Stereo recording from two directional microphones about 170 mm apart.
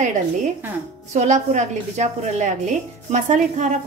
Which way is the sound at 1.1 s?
45° right (ahead or behind).